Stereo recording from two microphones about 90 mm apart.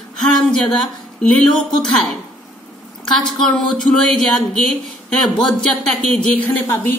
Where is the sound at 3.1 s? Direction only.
5° left (ahead or behind).